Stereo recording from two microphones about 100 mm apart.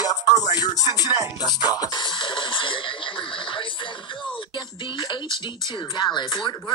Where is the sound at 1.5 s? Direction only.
40° left (ahead or behind).